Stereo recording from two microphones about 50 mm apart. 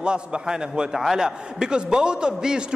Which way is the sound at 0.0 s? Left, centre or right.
Centre.